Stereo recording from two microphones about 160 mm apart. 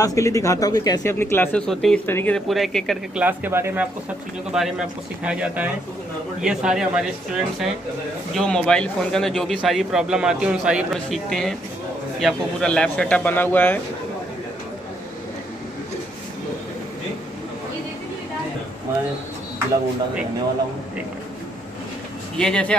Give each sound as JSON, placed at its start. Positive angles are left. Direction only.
{"t": 0.0, "sound": "a man's voice", "side_deg": 20}
{"t": 3.3, "sound": "speech", "side_deg": -15}
{"t": 4.5, "sound": "a man's voice", "side_deg": -5}
{"t": 22.4, "sound": "a man's voice", "side_deg": 5}